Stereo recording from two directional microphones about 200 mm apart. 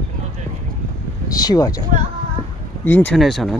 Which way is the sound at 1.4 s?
20° left (ahead or behind).